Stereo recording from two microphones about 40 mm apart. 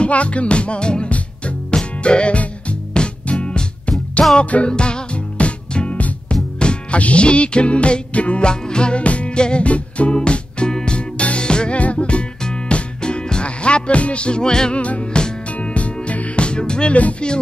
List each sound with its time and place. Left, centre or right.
0.0 s music: left
6.6 s music: left
11.0 s music: left
14.8 s music: left